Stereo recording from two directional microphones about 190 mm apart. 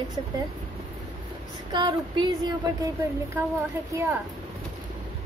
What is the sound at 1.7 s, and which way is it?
Speech, 25° right (ahead or behind).